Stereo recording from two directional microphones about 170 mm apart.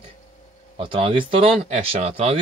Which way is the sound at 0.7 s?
30° right (ahead or behind).